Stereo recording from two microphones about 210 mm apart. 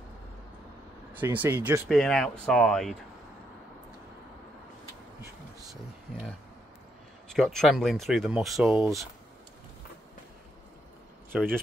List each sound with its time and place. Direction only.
1.1 s speech: 10° right (ahead or behind)
1.9 s speech: 5° left (ahead or behind)
7.2 s speech: centre (ahead or behind)
11.3 s speech: 5° left (ahead or behind)